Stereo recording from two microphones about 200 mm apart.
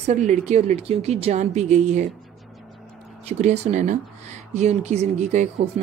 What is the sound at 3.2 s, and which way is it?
Speech, 35° right (ahead or behind).